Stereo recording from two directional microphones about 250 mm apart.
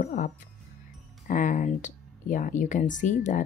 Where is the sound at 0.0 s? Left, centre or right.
Left.